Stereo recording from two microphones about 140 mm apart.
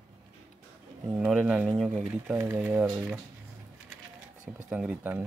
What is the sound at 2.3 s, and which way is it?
Speech, 20° right (ahead or behind).